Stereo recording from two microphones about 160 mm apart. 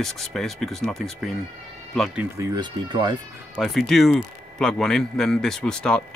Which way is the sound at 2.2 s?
20° right (ahead or behind).